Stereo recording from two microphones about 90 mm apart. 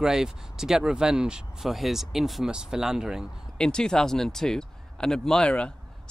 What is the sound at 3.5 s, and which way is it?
Speech, 10° left (ahead or behind).